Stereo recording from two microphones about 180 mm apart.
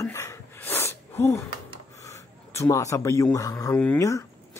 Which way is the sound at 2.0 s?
15° left (ahead or behind).